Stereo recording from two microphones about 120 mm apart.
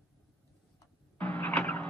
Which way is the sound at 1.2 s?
10° left (ahead or behind).